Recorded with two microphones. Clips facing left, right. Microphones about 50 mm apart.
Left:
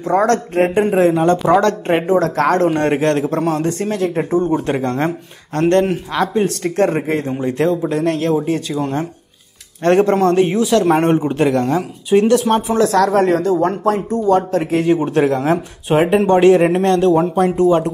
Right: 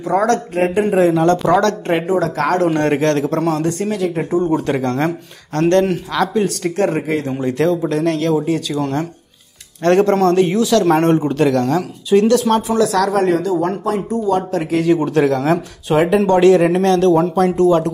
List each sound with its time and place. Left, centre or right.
0.0 s speech: left
2.7 s a man's voice: left
4.6 s a man's voice: left
6.3 s a man's voice: left
9.8 s a man's voice: left